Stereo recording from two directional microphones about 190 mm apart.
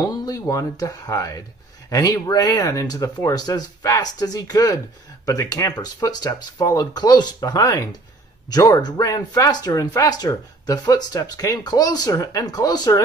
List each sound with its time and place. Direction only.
0.0 s speech: 20° left (ahead or behind)